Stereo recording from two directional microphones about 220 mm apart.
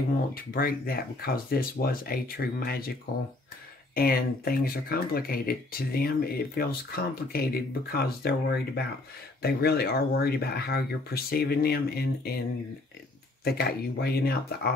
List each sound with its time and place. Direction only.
0.3 s speech: 40° left (ahead or behind)
3.9 s speech: 40° left (ahead or behind)
13.4 s speech: 45° left (ahead or behind)